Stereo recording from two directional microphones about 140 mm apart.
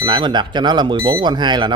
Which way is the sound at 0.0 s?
35° right (ahead or behind).